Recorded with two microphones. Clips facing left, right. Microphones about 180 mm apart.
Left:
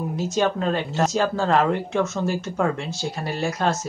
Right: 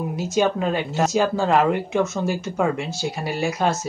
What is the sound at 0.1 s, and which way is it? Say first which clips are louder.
Speech: right 2 dB; 5° right (ahead or behind).